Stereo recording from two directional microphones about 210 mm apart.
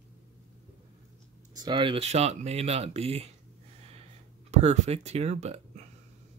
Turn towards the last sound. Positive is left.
turn(degrees=-30)  # may be behind; listen again after turning